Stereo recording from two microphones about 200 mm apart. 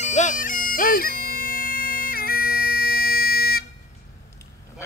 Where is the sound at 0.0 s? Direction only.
35° left (ahead or behind).